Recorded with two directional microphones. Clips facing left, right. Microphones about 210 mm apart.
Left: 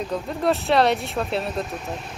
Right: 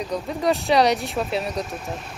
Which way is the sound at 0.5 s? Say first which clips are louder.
Right 1 dB; centre (ahead or behind).